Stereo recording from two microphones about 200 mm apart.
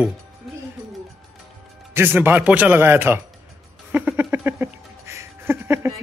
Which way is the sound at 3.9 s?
5° right (ahead or behind).